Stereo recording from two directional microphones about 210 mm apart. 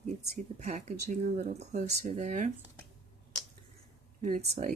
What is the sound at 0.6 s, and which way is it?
Speech, 35° right (ahead or behind).